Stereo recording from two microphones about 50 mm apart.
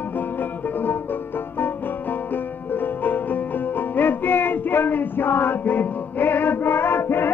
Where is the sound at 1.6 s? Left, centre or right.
Left.